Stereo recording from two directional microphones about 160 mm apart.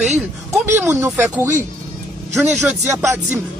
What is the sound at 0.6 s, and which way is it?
Speech, 15° right (ahead or behind).